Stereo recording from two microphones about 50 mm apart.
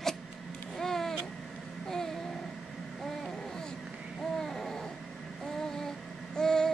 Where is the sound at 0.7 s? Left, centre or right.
Centre.